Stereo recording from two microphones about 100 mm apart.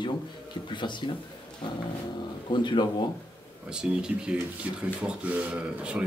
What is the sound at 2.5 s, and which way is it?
Speech, 50° left (ahead or behind).